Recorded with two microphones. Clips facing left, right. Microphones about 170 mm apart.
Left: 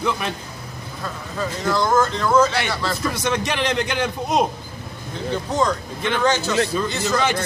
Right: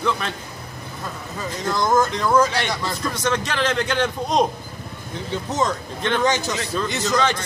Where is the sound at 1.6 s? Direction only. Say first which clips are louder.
Even; 15° right (ahead or behind).